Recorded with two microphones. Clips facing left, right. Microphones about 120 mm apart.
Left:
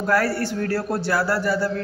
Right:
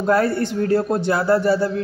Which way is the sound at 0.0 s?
20° right (ahead or behind).